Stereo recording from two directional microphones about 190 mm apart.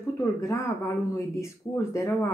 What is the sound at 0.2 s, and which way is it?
Speech, 15° left (ahead or behind).